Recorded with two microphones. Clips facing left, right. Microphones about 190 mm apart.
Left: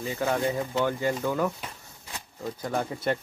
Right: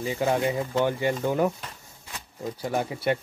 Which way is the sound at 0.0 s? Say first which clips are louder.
Right 2 dB; 20° right (ahead or behind).